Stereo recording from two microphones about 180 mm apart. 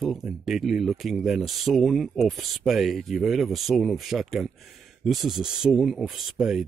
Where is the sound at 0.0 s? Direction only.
Centre (ahead or behind).